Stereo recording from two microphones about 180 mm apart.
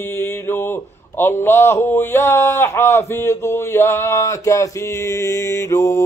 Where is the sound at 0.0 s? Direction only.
15° left (ahead or behind).